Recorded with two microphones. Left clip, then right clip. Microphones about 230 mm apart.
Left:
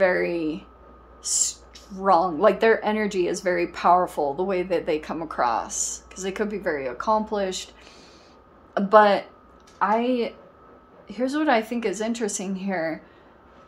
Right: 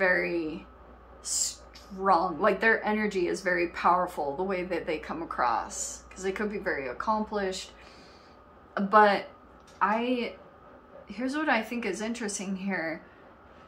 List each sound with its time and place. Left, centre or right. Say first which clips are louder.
0.0 s speech: left 5 dB; left
1.2 s owl: left 6 dB; left
2.0 s speech: left 5 dB; left
8.7 s a woman's voice: left 5 dB; left